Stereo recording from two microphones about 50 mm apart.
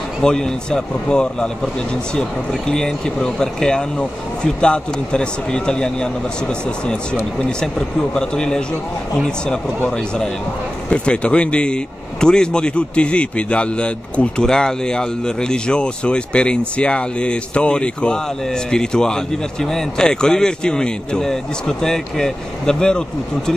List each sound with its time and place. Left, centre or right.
0.2 s speech: centre
2.7 s speech: centre
7.3 s speech: centre
9.8 s speech: centre